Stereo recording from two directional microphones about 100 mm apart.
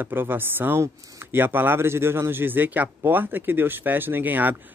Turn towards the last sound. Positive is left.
turn(degrees=-20)  # may be behind; listen again after turning